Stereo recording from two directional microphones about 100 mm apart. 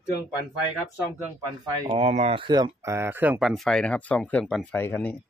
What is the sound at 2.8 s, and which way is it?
Speech, 30° right (ahead or behind).